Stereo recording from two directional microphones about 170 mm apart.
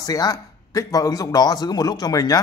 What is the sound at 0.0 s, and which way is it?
A man's voice, 20° left (ahead or behind).